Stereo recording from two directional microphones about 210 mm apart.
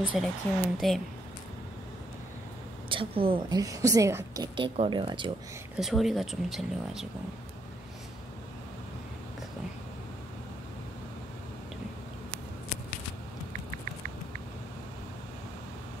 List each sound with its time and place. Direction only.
0.0 s speech: 5° right (ahead or behind)
2.9 s a woman's voice: 25° right (ahead or behind)
5.8 s speech: centre (ahead or behind)